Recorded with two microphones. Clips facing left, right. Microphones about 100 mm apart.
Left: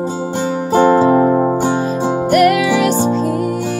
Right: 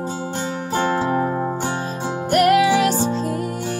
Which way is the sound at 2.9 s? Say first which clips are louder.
Left 6 dB; 40° left (ahead or behind).